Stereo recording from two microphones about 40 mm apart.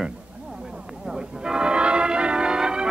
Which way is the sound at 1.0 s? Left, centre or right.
Centre.